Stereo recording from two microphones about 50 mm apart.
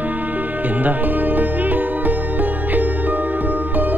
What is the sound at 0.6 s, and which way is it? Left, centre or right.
Music, right.